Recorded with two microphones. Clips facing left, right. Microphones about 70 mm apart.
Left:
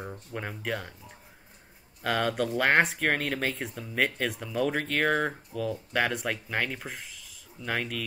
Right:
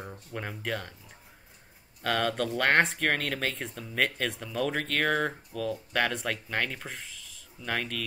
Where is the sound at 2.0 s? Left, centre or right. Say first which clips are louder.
Left 1 dB; centre.